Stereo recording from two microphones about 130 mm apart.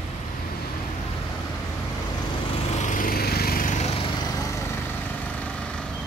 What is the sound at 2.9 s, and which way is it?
Lawn mower, 90° left.